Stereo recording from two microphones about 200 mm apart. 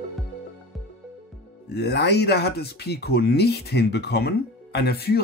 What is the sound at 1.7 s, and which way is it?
Speech, 55° left (ahead or behind).